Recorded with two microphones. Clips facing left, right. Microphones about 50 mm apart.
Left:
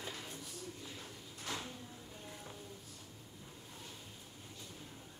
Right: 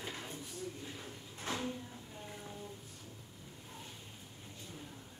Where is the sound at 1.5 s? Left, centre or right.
Right.